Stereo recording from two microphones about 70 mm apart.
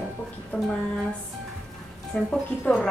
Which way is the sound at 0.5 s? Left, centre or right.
Left.